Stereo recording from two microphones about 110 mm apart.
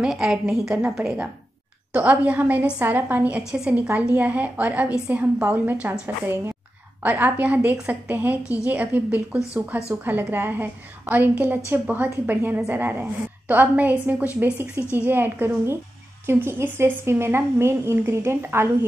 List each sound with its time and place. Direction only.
0.0 s a woman's voice: 5° right (ahead or behind); by 18.7 s 20° right (ahead or behind)